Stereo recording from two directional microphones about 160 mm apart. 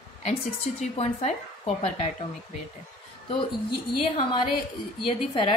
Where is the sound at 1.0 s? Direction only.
40° left (ahead or behind).